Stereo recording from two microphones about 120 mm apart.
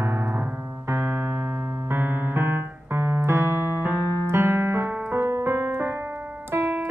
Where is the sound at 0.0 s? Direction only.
15° right (ahead or behind).